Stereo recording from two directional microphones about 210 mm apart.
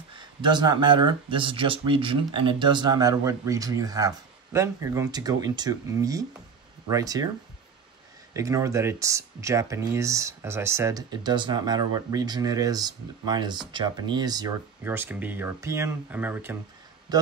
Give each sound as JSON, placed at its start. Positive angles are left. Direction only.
{"t": 0.4, "sound": "speech", "side_deg": -20}
{"t": 8.3, "sound": "a man's voice", "side_deg": -15}